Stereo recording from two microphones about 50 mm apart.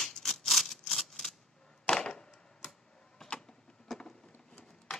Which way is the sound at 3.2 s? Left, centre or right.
Centre.